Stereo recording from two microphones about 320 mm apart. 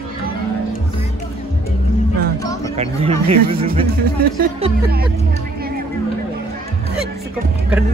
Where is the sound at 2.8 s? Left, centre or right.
Centre.